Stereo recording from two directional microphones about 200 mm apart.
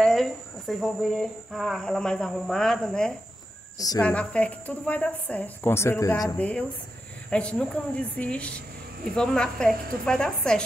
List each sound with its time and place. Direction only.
0.0 s speech: centre (ahead or behind)
3.7 s a woman's voice: 20° left (ahead or behind)
4.0 s a woman's voice: 5° left (ahead or behind)